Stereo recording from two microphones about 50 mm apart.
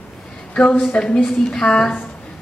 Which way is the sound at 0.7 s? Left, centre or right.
Centre.